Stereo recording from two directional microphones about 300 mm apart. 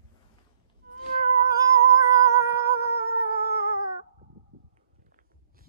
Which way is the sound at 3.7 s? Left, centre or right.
Centre.